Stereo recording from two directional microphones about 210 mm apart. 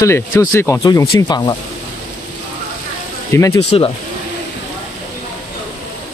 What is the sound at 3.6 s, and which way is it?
Speech, 25° left (ahead or behind).